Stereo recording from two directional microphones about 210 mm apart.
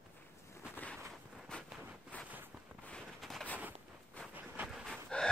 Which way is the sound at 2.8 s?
5° left (ahead or behind).